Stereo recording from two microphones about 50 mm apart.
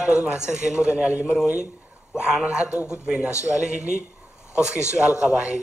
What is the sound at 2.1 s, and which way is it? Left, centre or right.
A man's voice, centre.